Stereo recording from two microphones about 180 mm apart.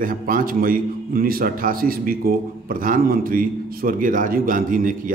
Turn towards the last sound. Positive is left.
turn(degrees=-50)  # may be behind; listen again after turning